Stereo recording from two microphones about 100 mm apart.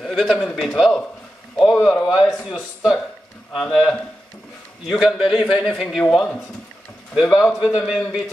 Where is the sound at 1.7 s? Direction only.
20° left (ahead or behind).